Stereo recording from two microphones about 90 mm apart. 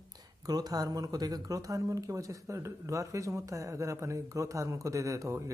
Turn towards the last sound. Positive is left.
turn(degrees=-35)  # may be behind; listen again after turning